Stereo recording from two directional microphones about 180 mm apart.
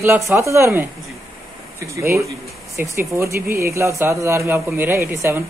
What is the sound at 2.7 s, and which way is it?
Speech, 15° right (ahead or behind).